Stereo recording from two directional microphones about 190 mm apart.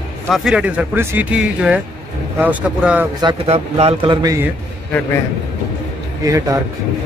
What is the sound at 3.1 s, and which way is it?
A man's voice, 30° right (ahead or behind).